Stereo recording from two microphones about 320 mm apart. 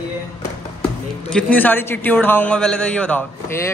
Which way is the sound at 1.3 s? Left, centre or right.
Centre.